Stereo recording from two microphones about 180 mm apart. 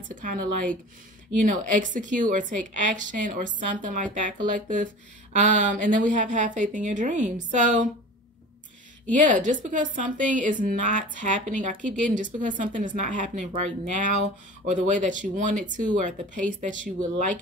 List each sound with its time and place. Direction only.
0.1 s a woman's voice: 45° right (ahead or behind)
9.1 s a woman's voice: 45° right (ahead or behind)